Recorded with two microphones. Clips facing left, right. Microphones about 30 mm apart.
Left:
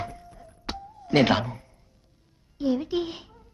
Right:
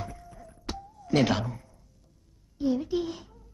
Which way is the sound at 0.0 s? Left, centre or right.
Left.